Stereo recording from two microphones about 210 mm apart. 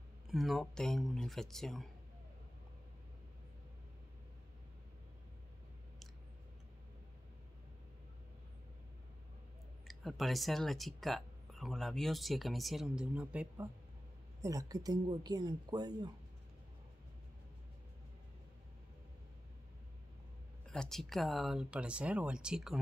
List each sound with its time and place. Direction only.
0.3 s speech: centre (ahead or behind)
9.8 s speech: centre (ahead or behind); by 16.1 s 20° right (ahead or behind)
20.7 s speech: centre (ahead or behind)